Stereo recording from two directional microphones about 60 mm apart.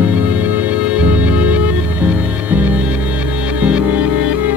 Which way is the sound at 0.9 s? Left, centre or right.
Right.